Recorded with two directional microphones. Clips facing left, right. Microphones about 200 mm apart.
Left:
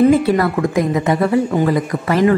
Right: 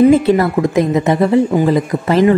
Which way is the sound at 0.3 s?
25° right (ahead or behind).